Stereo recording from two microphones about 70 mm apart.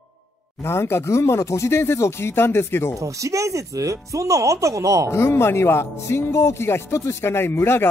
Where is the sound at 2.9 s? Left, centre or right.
Right.